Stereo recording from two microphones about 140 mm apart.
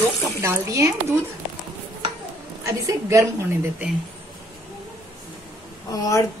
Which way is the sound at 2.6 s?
20° right (ahead or behind).